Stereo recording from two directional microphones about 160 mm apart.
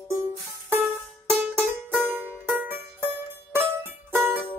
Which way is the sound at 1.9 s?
15° right (ahead or behind).